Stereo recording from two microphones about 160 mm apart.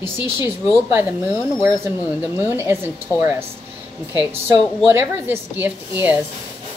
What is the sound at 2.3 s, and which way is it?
A woman's voice, 15° right (ahead or behind).